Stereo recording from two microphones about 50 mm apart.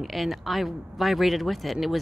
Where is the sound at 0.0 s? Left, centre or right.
Centre.